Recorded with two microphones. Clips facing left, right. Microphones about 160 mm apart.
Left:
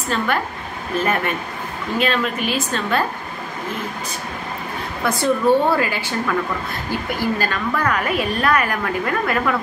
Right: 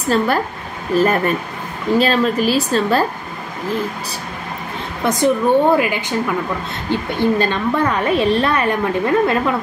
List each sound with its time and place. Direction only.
0.1 s a woman's voice: 35° right (ahead or behind)
5.0 s a woman's voice: 20° right (ahead or behind)